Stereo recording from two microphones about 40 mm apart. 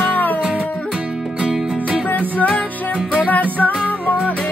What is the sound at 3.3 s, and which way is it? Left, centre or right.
Music, left.